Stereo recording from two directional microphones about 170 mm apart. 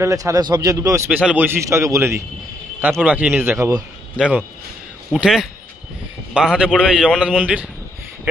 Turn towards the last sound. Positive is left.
turn(degrees=-5)  # may be behind; listen again after turning